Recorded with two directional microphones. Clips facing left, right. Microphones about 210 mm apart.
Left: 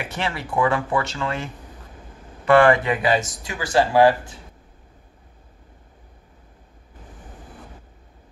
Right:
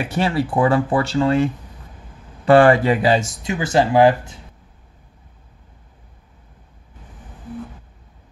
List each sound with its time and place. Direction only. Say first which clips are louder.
0.0 s speech: right 8 dB; 30° right (ahead or behind)